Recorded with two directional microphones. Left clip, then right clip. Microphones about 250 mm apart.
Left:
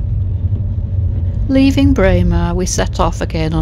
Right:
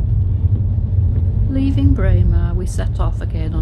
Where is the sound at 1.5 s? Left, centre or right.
Left.